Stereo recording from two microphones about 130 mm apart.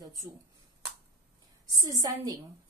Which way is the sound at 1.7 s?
25° right (ahead or behind).